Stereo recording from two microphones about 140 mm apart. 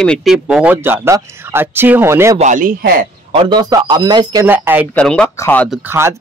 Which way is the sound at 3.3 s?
35° right (ahead or behind).